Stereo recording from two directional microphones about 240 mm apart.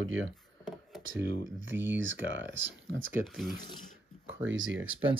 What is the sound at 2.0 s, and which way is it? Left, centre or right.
Speech, right.